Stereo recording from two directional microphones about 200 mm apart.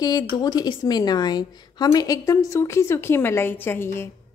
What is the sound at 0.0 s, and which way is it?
A woman's voice, 20° left (ahead or behind).